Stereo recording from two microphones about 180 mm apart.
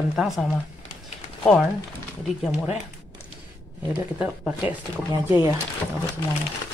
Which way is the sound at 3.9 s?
5° right (ahead or behind).